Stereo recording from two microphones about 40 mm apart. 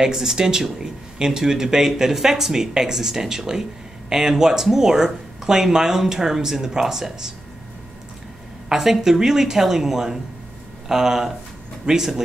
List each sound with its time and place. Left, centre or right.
0.0 s speech: centre
8.6 s speech: centre